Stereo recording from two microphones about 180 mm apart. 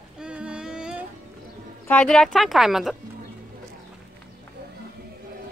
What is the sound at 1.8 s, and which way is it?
Speech, 5° left (ahead or behind).